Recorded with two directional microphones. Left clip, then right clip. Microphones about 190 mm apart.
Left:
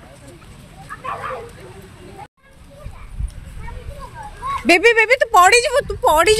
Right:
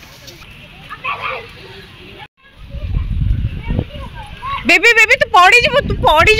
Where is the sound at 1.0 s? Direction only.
60° left (ahead or behind).